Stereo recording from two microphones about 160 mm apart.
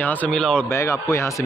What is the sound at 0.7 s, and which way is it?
Speech, 15° left (ahead or behind).